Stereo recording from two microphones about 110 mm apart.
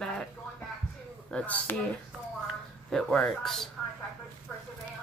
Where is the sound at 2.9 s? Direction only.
5° left (ahead or behind).